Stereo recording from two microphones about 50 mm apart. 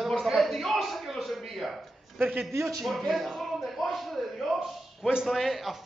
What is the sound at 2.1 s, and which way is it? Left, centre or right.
Speech, right.